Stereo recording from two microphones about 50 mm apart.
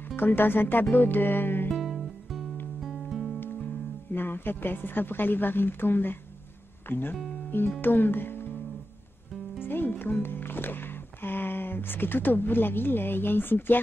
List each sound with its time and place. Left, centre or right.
0.1 s a woman's voice: left
1.8 s music: centre
4.1 s a woman's voice: left
9.6 s speech: left